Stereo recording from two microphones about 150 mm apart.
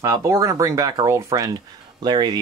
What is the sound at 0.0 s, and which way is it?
Speech, 20° right (ahead or behind).